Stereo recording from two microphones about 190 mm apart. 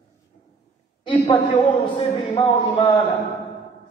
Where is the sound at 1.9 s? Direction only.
30° left (ahead or behind).